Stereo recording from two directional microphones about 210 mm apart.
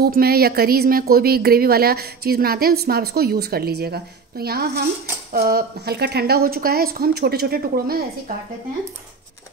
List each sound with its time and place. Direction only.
0.0 s speech: 45° right (ahead or behind)